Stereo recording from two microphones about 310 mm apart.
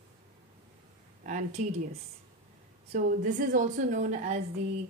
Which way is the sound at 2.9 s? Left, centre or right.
Right.